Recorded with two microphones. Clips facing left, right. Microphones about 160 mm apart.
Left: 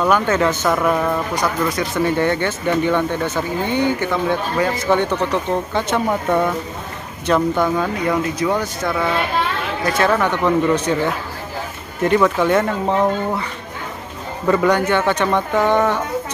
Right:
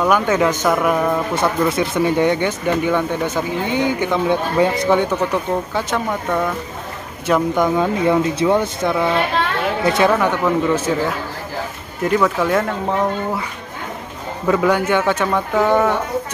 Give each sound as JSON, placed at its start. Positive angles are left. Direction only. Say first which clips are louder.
{"t": 0.0, "sound": "speech", "louder": "right 1 dB", "side_deg": -10}
{"t": 1.3, "sound": "speech", "louder": "right 2 dB", "side_deg": -25}
{"t": 7.2, "sound": "speech", "louder": "even", "side_deg": -10}
{"t": 10.1, "sound": "speech", "louder": "even", "side_deg": -5}
{"t": 12.0, "sound": "speech", "louder": "left 2 dB", "side_deg": 0}
{"t": 14.5, "sound": "speech", "louder": "even", "side_deg": -5}